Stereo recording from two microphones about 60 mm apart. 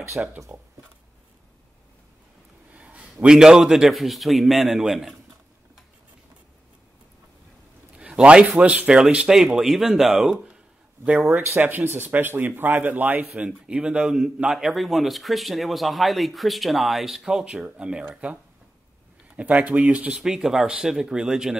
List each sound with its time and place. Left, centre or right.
0.2 s speech: right
2.7 s speech: centre
7.9 s speech: centre
11.3 s speech: right
13.5 s speech: centre
20.2 s speech: centre